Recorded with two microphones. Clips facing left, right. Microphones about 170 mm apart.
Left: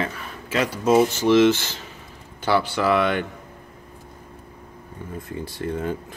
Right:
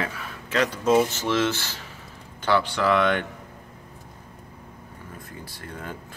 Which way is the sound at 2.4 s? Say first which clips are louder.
Left 1 dB; 10° left (ahead or behind).